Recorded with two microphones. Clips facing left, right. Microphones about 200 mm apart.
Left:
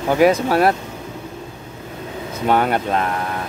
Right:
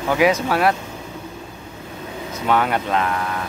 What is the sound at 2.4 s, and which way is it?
Speech, 40° left (ahead or behind).